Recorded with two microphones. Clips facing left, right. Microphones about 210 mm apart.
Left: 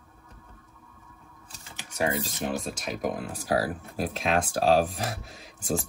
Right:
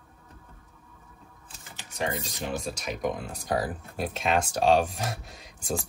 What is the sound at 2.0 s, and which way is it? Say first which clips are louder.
Speech: left 3 dB; 5° left (ahead or behind).